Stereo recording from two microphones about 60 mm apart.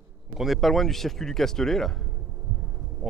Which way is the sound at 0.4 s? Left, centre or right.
Centre.